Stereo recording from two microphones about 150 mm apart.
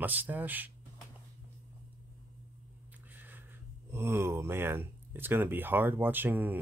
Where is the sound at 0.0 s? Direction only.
10° right (ahead or behind).